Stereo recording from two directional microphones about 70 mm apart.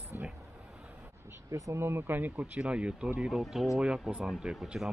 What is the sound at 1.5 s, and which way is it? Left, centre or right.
Speech, right.